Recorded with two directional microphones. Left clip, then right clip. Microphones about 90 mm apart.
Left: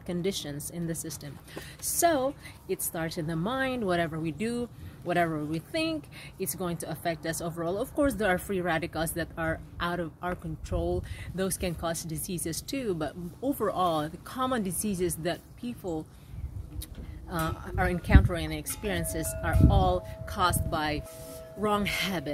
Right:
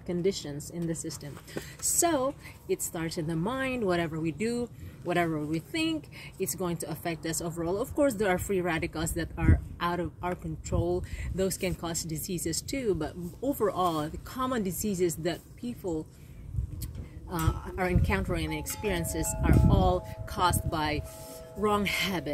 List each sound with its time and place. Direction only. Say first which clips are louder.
0.0 s speech: right 2 dB; 35° left (ahead or behind)
17.3 s speech: left 1 dB; 20° left (ahead or behind)